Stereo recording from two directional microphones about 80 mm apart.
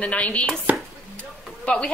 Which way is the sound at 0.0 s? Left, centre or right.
Centre.